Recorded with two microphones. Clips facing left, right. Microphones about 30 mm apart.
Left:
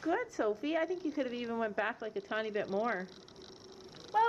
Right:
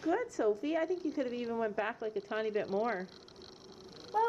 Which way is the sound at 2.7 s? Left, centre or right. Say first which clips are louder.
Left 2 dB; left.